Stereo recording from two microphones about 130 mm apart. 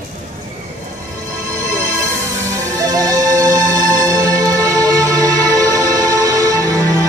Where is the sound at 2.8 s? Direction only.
25° right (ahead or behind).